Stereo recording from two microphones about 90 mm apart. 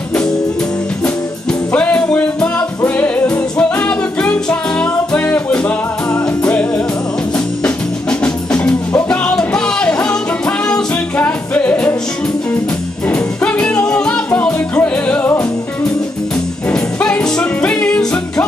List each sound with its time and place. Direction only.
1.7 s music: 15° left (ahead or behind)
13.0 s music: 15° left (ahead or behind)
16.7 s music: 10° left (ahead or behind)